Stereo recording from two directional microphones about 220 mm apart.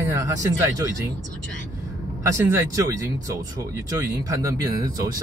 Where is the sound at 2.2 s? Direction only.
15° right (ahead or behind).